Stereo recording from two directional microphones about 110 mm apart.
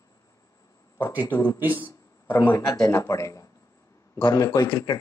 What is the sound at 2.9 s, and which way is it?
Speech, 25° left (ahead or behind).